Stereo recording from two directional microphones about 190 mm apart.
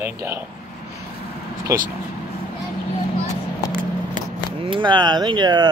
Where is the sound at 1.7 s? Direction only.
15° right (ahead or behind).